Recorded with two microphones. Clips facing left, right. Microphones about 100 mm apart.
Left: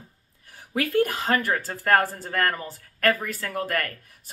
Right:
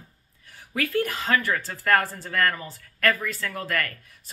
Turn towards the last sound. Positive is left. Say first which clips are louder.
# left 1 dB
turn(degrees=50)  # may be behind; listen again after turning